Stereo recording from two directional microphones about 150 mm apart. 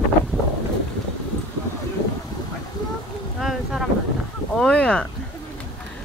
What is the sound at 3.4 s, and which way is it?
Boat, centre (ahead or behind).